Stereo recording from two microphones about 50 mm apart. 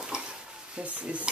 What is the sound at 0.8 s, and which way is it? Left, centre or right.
Speech, right.